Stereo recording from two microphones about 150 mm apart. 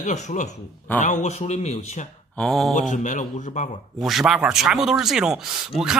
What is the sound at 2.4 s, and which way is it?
Speech, 5° left (ahead or behind).